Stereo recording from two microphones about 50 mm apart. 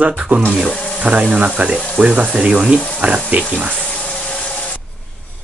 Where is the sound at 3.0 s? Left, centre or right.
Right.